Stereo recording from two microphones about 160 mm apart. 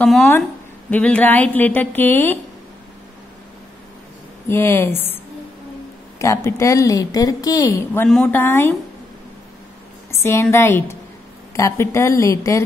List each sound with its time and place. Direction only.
0.0 s a woman's voice: centre (ahead or behind)
4.5 s a woman's voice: 15° left (ahead or behind)
10.2 s a woman's voice: 15° left (ahead or behind)